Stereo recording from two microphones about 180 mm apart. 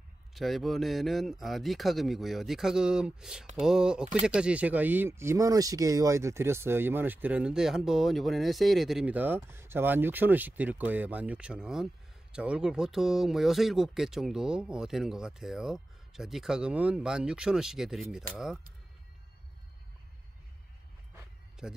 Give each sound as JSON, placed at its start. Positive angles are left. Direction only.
{"t": 0.3, "sound": "speech", "side_deg": 0}
{"t": 21.6, "sound": "a man's voice", "side_deg": -5}